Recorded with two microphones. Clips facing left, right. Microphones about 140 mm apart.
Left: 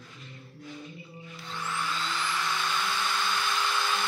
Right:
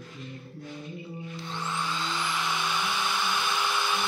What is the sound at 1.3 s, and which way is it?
Vacuum cleaner, 20° right (ahead or behind).